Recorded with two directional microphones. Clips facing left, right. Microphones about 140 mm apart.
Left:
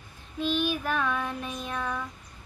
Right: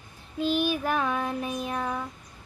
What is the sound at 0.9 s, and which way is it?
Child singing, 35° right (ahead or behind).